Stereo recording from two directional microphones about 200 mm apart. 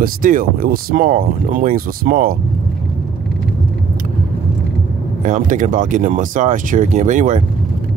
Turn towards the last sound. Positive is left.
turn(degrees=-40)  # may be behind; listen again after turning